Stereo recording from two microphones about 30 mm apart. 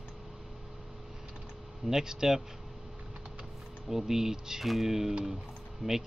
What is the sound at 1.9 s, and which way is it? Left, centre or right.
Speech, right.